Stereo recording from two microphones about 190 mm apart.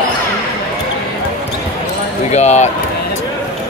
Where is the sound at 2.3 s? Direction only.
35° left (ahead or behind).